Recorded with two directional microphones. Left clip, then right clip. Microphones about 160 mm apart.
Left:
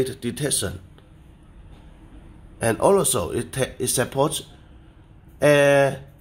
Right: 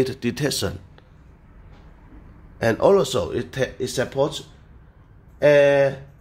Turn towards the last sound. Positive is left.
turn(degrees=25)  # may be behind; listen again after turning